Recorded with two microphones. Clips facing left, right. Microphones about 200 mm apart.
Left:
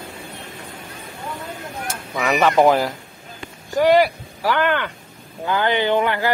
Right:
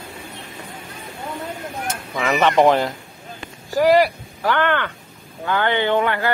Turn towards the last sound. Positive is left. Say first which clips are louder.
# even
turn(degrees=15)  # may be behind; listen again after turning